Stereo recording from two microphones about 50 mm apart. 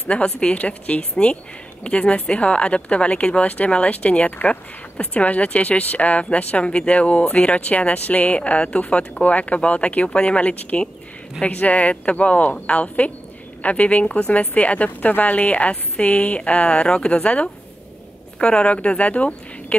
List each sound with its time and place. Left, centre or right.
0.1 s a woman's voice: centre